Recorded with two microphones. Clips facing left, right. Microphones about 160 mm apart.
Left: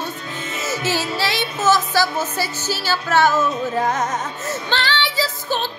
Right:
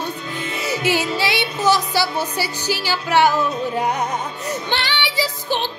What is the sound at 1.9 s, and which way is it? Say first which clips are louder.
Speech: left 1 dB; 15° right (ahead or behind).